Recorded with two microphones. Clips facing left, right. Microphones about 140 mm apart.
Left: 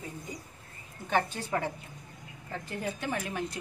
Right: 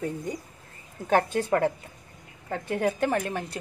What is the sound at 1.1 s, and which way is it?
Speech, 50° right (ahead or behind).